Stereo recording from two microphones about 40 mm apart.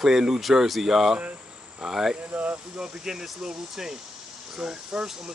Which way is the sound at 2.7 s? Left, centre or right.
Centre.